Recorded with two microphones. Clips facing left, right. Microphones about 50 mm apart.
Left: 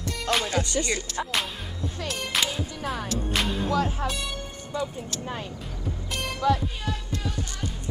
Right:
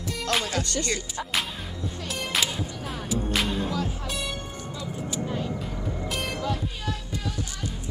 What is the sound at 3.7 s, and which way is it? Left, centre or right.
Music, left.